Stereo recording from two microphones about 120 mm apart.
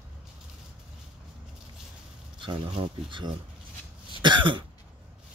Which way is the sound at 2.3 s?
45° right (ahead or behind).